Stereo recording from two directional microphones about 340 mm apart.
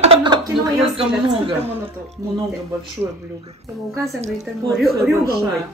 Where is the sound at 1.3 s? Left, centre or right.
Centre.